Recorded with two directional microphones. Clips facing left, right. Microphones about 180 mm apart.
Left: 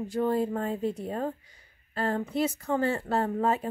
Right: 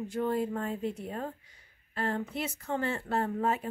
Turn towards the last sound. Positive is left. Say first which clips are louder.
# left 3 dB
turn(degrees=35)  # may be behind; listen again after turning